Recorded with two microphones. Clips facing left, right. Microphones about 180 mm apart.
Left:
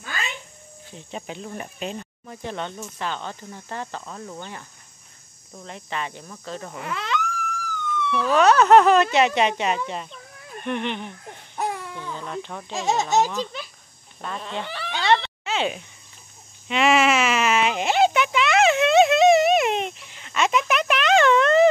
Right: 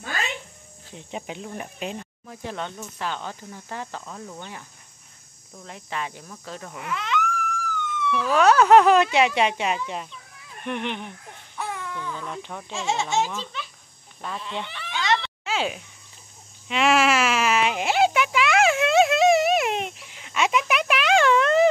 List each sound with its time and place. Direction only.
0.9 s speech: 10° right (ahead or behind)
6.7 s a sound: 35° left (ahead or behind)
8.3 s speech: 5° right (ahead or behind)
11.5 s baby cry: 40° left (ahead or behind)
11.9 s baby cry: 15° left (ahead or behind)
12.3 s speech: 5° right (ahead or behind)
12.7 s speech: 40° left (ahead or behind)
14.4 s a sound: 40° left (ahead or behind)
15.4 s a sound: 5° right (ahead or behind)
16.6 s sheep: centre (ahead or behind)